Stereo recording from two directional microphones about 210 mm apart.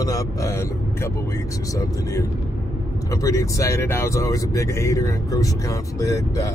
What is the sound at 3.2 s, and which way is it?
Speech, 15° left (ahead or behind).